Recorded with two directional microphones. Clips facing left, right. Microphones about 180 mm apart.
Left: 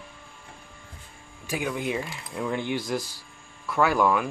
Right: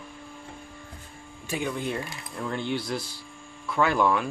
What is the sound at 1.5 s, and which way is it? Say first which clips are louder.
Speech: left 1 dB; 10° left (ahead or behind).